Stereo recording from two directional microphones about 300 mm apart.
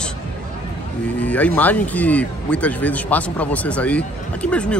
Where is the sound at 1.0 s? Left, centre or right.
Centre.